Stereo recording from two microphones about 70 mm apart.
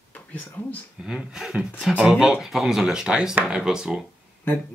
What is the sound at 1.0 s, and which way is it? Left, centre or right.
Speech, centre.